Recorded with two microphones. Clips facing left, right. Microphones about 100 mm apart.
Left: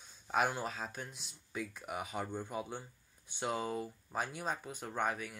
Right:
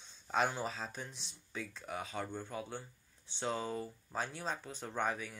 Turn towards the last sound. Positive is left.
turn(degrees=5)  # may be behind; listen again after turning